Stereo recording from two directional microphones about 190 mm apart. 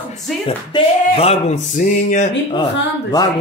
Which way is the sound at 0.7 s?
30° left (ahead or behind).